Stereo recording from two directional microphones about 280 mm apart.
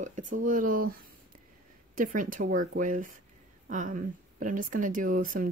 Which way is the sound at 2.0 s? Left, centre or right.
Right.